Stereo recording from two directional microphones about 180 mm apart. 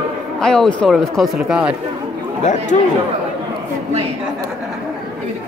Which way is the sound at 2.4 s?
40° left (ahead or behind).